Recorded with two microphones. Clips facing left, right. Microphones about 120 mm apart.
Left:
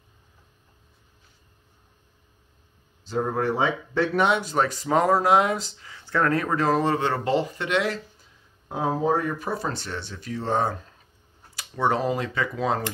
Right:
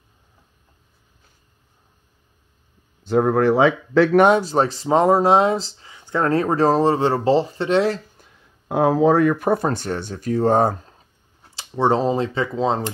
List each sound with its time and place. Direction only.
3.0 s speech: 70° right (ahead or behind); by 4.2 s 90° right
4.4 s speech: 30° right (ahead or behind)
8.2 s a sound: 85° right
9.5 s speech: 50° right (ahead or behind)
11.5 s speech: 25° right (ahead or behind)